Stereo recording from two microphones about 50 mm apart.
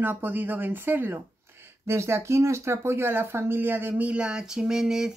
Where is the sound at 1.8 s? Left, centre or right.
Right.